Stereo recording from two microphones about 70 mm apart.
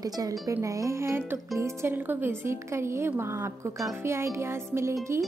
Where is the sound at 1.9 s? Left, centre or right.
Right.